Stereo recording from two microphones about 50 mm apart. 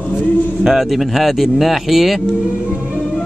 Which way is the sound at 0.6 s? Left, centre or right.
Centre.